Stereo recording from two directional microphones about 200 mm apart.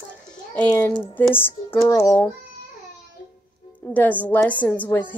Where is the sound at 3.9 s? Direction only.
10° left (ahead or behind).